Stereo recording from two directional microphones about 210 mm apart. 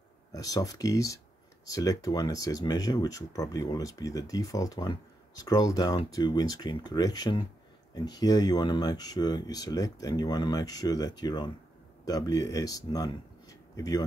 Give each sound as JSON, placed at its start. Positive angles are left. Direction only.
{"t": 0.3, "sound": "speech", "side_deg": 15}